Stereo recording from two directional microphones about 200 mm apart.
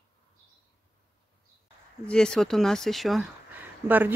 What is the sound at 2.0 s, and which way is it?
Speech, 5° left (ahead or behind).